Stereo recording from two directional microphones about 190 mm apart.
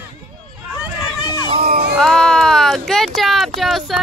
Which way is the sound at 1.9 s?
5° left (ahead or behind).